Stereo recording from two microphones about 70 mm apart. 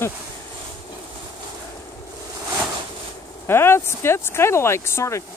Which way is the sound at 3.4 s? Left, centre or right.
Left.